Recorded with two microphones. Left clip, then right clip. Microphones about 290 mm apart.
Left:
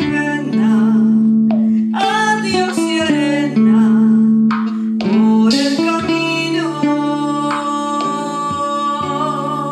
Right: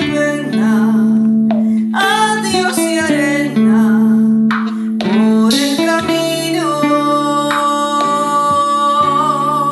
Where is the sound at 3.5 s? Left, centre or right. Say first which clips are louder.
Right 1 dB; centre.